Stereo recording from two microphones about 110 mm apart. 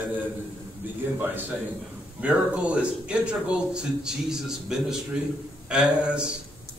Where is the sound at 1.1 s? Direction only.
20° right (ahead or behind).